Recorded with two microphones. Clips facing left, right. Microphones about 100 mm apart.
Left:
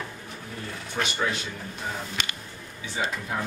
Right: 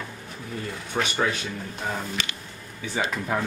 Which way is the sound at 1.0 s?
65° right (ahead or behind).